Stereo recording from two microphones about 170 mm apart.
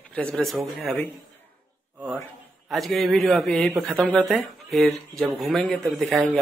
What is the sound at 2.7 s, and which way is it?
Speech, centre (ahead or behind).